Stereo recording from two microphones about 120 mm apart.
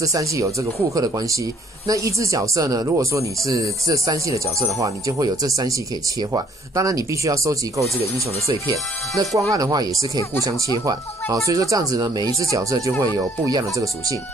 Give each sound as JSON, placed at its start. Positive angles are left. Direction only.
{"t": 0.0, "sound": "speech", "side_deg": -25}
{"t": 9.2, "sound": "speech", "side_deg": -30}
{"t": 11.4, "sound": "speech", "side_deg": -30}